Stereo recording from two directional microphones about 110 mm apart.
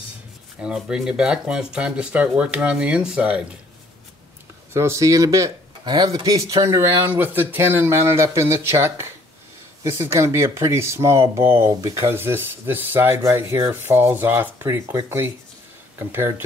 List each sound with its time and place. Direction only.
0.6 s speech: 5° right (ahead or behind)
4.7 s speech: 25° right (ahead or behind)
12.1 s speech: 20° right (ahead or behind)